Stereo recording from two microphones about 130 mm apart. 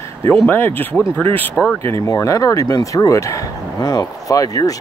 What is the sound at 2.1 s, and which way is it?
Speech, 25° left (ahead or behind).